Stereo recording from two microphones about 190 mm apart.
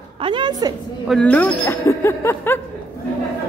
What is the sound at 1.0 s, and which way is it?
Speech, 5° left (ahead or behind).